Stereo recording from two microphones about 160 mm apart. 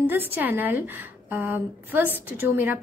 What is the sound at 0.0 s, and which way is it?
A woman's voice, 10° right (ahead or behind).